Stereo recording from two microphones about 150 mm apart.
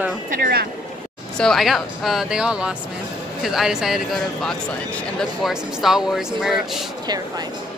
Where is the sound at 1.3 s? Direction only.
5° left (ahead or behind).